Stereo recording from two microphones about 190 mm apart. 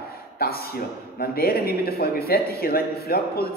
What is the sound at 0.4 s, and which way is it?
A man's voice, 55° left (ahead or behind).